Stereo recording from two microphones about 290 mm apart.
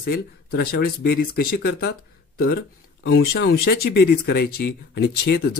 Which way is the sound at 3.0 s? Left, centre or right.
Left.